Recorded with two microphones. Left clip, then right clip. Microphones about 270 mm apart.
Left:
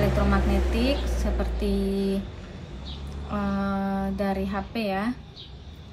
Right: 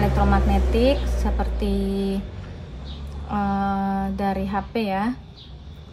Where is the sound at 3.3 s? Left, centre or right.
Centre.